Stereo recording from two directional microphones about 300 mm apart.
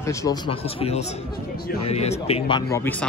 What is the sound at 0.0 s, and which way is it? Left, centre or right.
Speech, centre.